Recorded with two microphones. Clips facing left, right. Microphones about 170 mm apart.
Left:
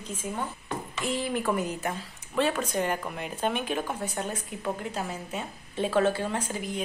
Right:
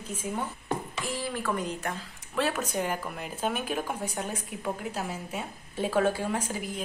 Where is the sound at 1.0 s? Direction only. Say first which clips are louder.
Left 5 dB; 20° left (ahead or behind).